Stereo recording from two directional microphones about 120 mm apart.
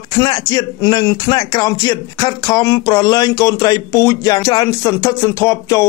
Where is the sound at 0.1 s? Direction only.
35° left (ahead or behind).